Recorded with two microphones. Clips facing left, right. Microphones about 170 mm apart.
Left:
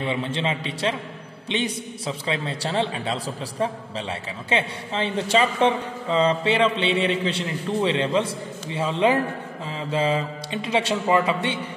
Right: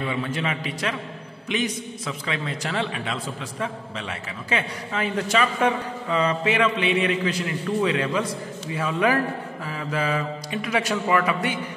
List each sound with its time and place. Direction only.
0.0 s a man's voice: 25° left (ahead or behind)